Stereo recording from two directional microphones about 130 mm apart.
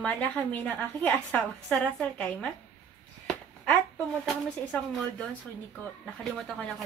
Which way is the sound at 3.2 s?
10° left (ahead or behind).